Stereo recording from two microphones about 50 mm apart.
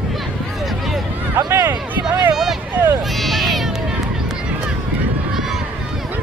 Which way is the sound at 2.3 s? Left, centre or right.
Centre.